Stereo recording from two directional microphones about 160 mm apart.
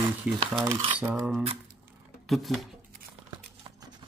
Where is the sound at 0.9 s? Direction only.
10° right (ahead or behind).